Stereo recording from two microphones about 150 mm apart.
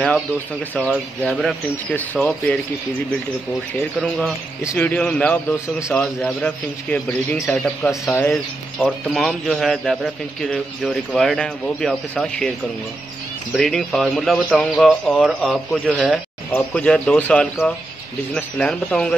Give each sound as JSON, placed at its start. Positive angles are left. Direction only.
{"t": 0.7, "sound": "a man's voice", "side_deg": 5}
{"t": 4.7, "sound": "a man's voice", "side_deg": 10}
{"t": 8.0, "sound": "a man's voice", "side_deg": 15}
{"t": 8.8, "sound": "a man's voice", "side_deg": 0}
{"t": 13.6, "sound": "a man's voice", "side_deg": 0}